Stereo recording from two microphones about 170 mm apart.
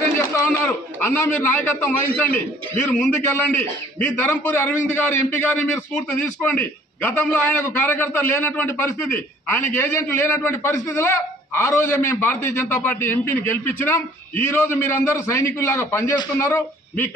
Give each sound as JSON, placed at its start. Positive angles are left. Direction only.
{"t": 0.4, "sound": "a man's voice", "side_deg": 10}